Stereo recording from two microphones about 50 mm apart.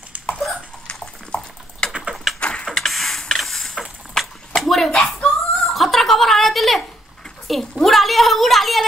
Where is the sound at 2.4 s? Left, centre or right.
Centre.